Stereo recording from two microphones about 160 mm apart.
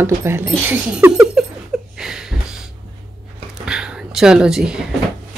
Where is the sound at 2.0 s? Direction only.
5° right (ahead or behind).